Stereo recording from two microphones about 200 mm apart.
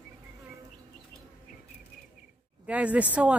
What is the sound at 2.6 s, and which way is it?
Speech, 5° right (ahead or behind).